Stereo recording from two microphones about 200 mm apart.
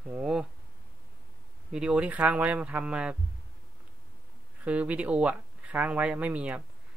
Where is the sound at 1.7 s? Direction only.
5° right (ahead or behind).